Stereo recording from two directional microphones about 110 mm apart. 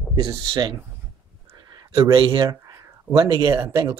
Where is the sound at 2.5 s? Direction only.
30° right (ahead or behind).